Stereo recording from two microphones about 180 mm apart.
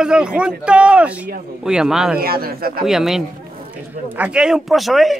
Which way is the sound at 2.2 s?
55° right (ahead or behind).